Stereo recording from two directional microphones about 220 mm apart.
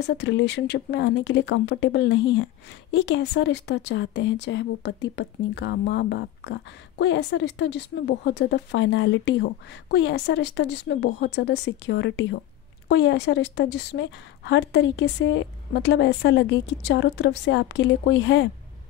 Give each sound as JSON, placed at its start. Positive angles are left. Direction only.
{"t": 0.0, "sound": "a woman's voice", "side_deg": 50}